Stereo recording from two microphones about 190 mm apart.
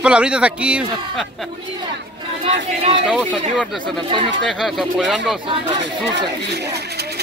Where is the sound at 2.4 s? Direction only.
30° right (ahead or behind).